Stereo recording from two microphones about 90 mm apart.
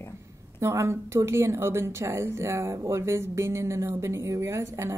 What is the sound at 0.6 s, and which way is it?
A woman's voice, 30° right (ahead or behind).